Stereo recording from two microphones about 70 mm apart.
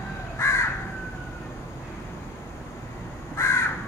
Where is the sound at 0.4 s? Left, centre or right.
Left.